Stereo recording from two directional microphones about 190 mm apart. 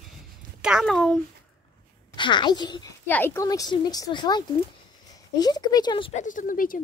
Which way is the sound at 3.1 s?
10° left (ahead or behind).